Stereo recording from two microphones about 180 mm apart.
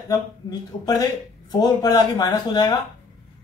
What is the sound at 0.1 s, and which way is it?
Speech, 20° left (ahead or behind).